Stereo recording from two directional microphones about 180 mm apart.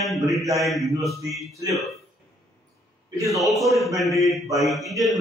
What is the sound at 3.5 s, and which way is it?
Mantra, centre (ahead or behind).